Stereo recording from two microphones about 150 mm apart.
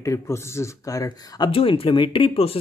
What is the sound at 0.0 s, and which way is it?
Speech, 20° left (ahead or behind).